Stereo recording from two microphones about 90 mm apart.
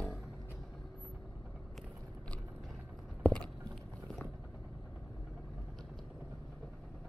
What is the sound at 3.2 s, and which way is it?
Clip-clop, 15° left (ahead or behind).